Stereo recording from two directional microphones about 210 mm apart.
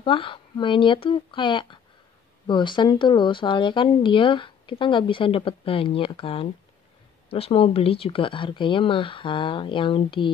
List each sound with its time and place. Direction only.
0.0 s speech: 25° left (ahead or behind)